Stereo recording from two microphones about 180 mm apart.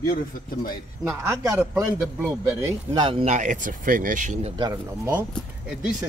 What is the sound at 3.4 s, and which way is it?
Speech, 45° right (ahead or behind).